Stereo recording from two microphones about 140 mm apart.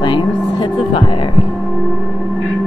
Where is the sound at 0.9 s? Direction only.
40° left (ahead or behind).